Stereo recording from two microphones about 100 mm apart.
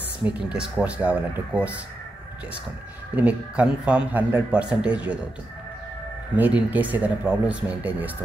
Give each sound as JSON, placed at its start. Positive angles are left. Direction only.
{"t": 0.2, "sound": "a man's voice", "side_deg": -10}
{"t": 3.2, "sound": "a man's voice", "side_deg": -15}
{"t": 6.3, "sound": "a man's voice", "side_deg": -15}